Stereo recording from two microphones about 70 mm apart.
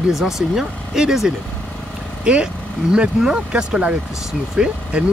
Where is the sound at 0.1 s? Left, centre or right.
Centre.